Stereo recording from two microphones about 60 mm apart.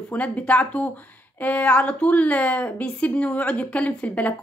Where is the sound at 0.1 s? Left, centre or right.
Left.